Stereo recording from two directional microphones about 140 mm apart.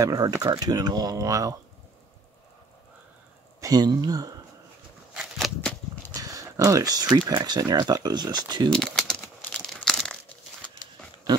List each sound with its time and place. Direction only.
0.0 s speech: 25° right (ahead or behind)
3.6 s speech: 30° right (ahead or behind)
5.1 s a sound: 5° right (ahead or behind)
6.1 s speech: 25° right (ahead or behind)
8.6 s a sound: 5° left (ahead or behind)
9.5 s crumpling: centre (ahead or behind)